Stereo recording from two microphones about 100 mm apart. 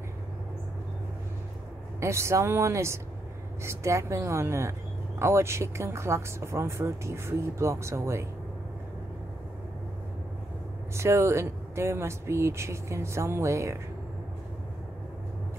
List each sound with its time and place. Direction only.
2.0 s speech: 30° right (ahead or behind)
11.0 s speech: 30° right (ahead or behind)